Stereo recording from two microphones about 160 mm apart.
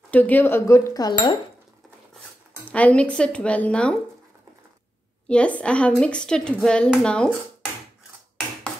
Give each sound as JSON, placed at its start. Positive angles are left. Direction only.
{"t": 0.1, "sound": "speech", "side_deg": 10}
{"t": 2.7, "sound": "speech", "side_deg": 10}
{"t": 5.3, "sound": "speech", "side_deg": 5}